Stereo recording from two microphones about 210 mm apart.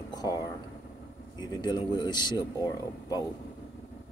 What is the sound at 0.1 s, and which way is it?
Speech, 15° left (ahead or behind).